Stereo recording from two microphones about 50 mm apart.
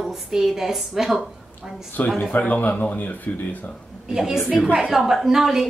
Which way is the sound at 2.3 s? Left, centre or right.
Left.